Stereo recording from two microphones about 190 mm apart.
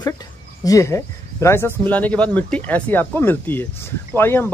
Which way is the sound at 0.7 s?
15° left (ahead or behind).